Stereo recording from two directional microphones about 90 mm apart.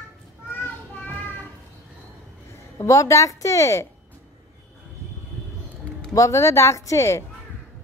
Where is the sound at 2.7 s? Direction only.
35° left (ahead or behind).